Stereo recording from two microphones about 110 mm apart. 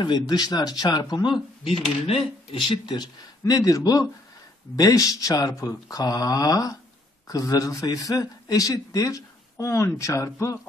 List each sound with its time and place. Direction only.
0.0 s speech: 40° left (ahead or behind)
1.6 s speech: 60° left (ahead or behind); by 10.6 s 30° left (ahead or behind)